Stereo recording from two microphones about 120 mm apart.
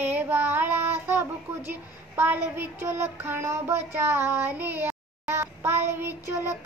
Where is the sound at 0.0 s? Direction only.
15° right (ahead or behind).